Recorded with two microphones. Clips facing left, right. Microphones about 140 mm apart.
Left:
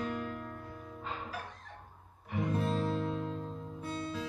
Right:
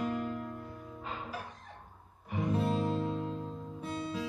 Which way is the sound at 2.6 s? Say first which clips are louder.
Right 2 dB; 15° right (ahead or behind).